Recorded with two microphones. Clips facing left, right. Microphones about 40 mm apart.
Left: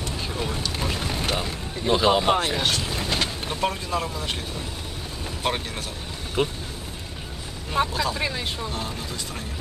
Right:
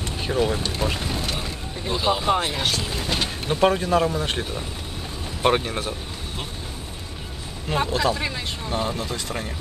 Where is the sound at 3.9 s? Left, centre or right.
Right.